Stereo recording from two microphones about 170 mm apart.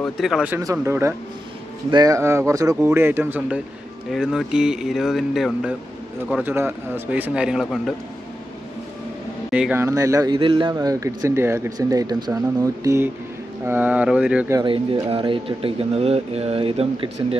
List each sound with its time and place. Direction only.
0.0 s speech: centre (ahead or behind)
0.6 s speech: 15° right (ahead or behind); by 7.9 s centre (ahead or behind)
9.5 s speech: 10° right (ahead or behind)
10.3 s speech: 30° right (ahead or behind); by 14.5 s 5° right (ahead or behind)
14.5 s speech: 30° right (ahead or behind)